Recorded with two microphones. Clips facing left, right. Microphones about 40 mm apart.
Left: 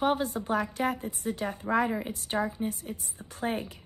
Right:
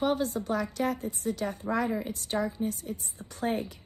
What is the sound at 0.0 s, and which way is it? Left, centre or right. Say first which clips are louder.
A woman's voice: left 1 dB; left.